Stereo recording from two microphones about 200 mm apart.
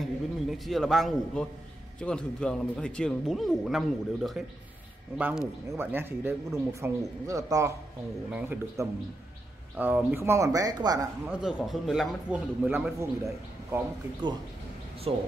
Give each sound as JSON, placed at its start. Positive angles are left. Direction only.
{"t": 0.0, "sound": "a man's voice", "side_deg": 0}
{"t": 11.2, "sound": "a man's voice", "side_deg": 0}
{"t": 15.1, "sound": "speech", "side_deg": -25}